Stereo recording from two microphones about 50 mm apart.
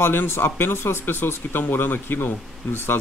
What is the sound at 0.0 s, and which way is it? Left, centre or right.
Speech, left.